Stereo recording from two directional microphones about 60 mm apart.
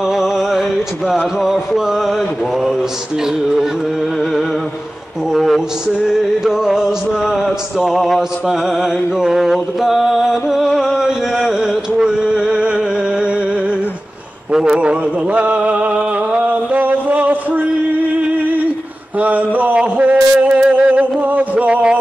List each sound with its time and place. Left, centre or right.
0.0 s music: centre
1.2 s mantra: centre
6.0 s music: centre
14.5 s a sound: centre